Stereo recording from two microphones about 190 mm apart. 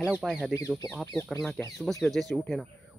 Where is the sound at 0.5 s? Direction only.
20° left (ahead or behind); by 2.7 s centre (ahead or behind).